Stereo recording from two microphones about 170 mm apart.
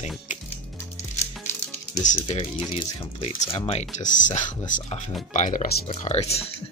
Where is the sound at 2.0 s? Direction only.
35° left (ahead or behind).